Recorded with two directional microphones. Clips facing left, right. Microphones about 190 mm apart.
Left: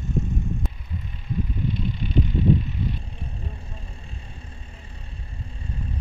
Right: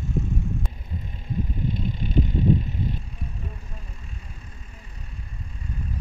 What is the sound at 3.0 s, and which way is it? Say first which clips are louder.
Vehicle: even; 30° left (ahead or behind).